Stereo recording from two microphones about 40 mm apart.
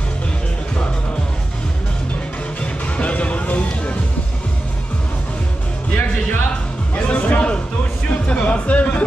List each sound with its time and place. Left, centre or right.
2.6 s music: left
7.0 s music: left